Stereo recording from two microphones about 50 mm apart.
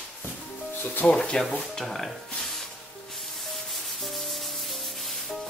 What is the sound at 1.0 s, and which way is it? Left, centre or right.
Speech, left.